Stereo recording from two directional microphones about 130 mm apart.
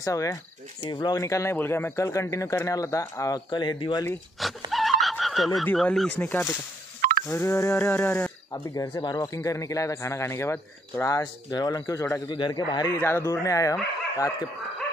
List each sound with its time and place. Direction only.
0.0 s speech: 25° left (ahead or behind)
4.4 s neigh: centre (ahead or behind)
5.8 s speech: centre (ahead or behind)
6.1 s speech: 15° left (ahead or behind)
8.7 s speech: 30° left (ahead or behind)
12.3 s a man's voice: 35° left (ahead or behind)
12.9 s speech: 20° left (ahead or behind)